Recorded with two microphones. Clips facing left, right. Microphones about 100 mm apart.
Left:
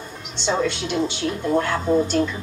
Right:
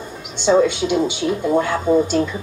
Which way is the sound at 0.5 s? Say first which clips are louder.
Right 7 dB; 10° right (ahead or behind).